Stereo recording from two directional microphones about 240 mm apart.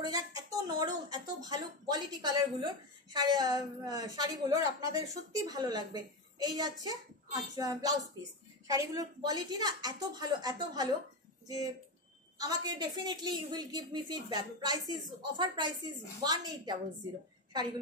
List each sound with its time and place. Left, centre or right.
0.0 s speech: centre